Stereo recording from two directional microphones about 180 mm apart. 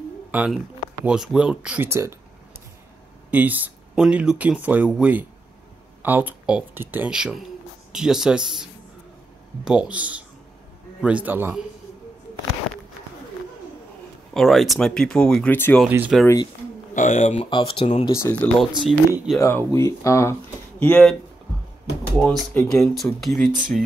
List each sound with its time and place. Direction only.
0.3 s speech: 10° right (ahead or behind)
3.3 s speech: 10° right (ahead or behind)
9.7 s speech: 5° right (ahead or behind)
14.3 s speech: centre (ahead or behind)
15.9 s speech: 10° right (ahead or behind)
16.9 s speech: 45° left (ahead or behind)
18.1 s speech: 15° left (ahead or behind)
18.8 s speech: centre (ahead or behind)
19.3 s speech: 15° left (ahead or behind)
20.8 s speech: 5° left (ahead or behind)
22.2 s speech: centre (ahead or behind)
23.2 s speech: centre (ahead or behind)